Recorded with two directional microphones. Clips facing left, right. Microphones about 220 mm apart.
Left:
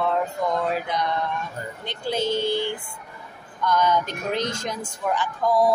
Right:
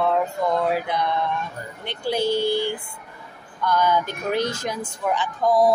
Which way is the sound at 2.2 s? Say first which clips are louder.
Right 2 dB; 20° left (ahead or behind).